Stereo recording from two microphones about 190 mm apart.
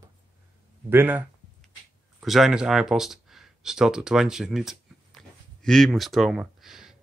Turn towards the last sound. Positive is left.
turn(degrees=0)  # may be behind; listen again after turning